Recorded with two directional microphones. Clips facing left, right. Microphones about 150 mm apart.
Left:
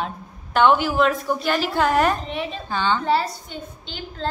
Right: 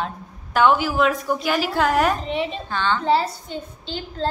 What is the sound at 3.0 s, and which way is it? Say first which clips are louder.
A woman's voice: right 2 dB; 25° right (ahead or behind).